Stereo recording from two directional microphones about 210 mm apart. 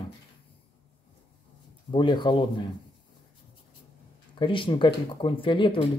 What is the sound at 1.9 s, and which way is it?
Speech, 20° left (ahead or behind).